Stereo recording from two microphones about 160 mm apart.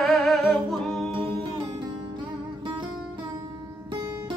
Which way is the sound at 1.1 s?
30° right (ahead or behind).